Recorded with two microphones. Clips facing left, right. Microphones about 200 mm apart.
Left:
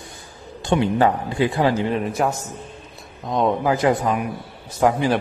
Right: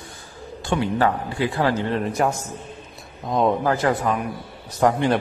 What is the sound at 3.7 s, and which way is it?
A man's voice, 15° left (ahead or behind).